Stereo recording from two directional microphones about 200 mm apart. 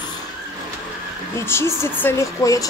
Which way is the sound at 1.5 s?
10° left (ahead or behind).